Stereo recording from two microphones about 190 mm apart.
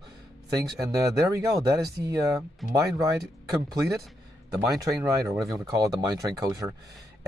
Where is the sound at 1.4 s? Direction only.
20° right (ahead or behind).